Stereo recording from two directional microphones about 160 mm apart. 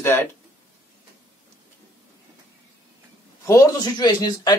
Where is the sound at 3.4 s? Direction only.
20° left (ahead or behind).